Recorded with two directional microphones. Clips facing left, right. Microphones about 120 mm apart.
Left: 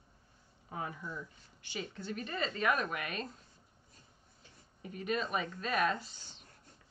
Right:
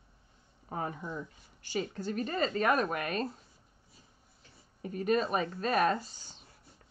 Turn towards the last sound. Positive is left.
turn(degrees=-40)  # may be behind; listen again after turning